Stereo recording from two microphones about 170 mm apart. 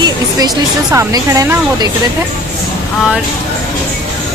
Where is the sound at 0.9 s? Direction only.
20° right (ahead or behind).